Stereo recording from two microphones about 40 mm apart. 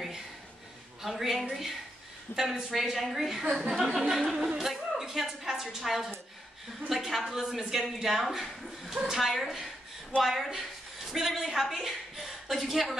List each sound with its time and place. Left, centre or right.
1.0 s a woman's voice: centre